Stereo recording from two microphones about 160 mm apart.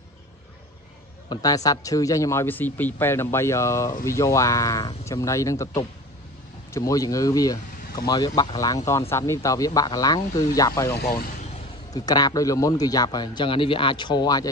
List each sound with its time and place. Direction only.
1.3 s speech: 25° left (ahead or behind)
11.9 s speech: 25° left (ahead or behind)